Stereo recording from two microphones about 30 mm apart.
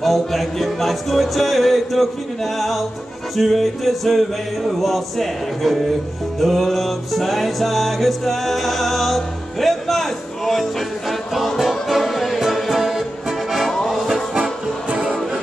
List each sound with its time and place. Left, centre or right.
0.0 s music: centre
14.3 s music: right